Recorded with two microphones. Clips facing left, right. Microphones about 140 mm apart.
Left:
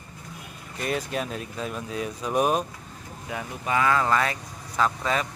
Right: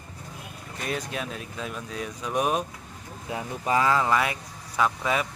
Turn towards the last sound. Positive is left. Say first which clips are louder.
# even
turn(degrees=-5)  # may be behind; listen again after turning